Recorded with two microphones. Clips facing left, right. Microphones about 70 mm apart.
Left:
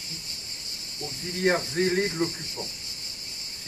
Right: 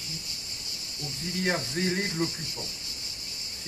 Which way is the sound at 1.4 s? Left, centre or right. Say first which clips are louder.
Left 5 dB; left.